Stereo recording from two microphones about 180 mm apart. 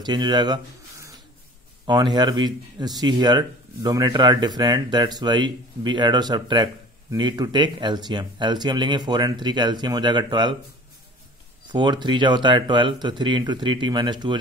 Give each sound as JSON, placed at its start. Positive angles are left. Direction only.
{"t": 0.0, "sound": "speech", "side_deg": -25}
{"t": 11.7, "sound": "speech", "side_deg": -25}